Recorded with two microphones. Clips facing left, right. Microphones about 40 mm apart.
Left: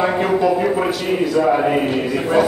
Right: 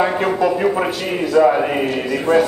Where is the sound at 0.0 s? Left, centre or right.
Centre.